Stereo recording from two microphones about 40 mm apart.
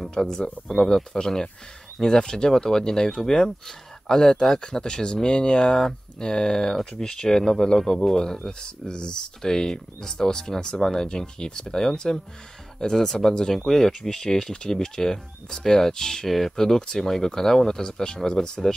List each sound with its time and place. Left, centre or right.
0.3 s speech: centre
16.3 s speech: centre